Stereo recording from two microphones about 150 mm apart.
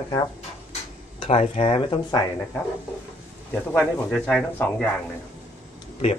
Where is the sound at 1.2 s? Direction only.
45° left (ahead or behind).